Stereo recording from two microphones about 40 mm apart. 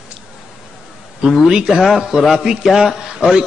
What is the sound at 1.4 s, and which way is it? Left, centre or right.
A man's voice, centre.